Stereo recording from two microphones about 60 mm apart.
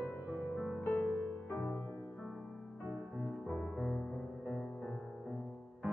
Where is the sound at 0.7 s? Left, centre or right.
Left.